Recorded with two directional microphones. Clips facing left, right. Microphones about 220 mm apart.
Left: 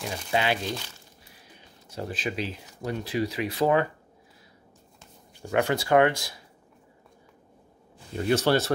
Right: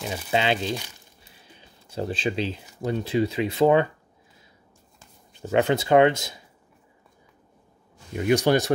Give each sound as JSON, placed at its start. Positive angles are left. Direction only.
{"t": 0.3, "sound": "speech", "side_deg": -25}
{"t": 5.5, "sound": "speech", "side_deg": -20}
{"t": 8.1, "sound": "speech", "side_deg": -15}